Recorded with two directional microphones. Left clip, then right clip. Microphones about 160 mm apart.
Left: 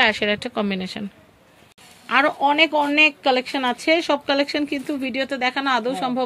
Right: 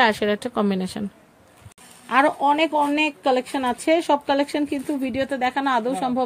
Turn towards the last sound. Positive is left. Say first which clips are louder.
# even
turn(degrees=-20)  # may be behind; listen again after turning